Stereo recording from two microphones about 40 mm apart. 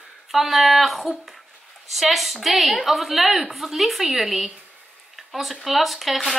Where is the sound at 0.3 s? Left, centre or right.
Centre.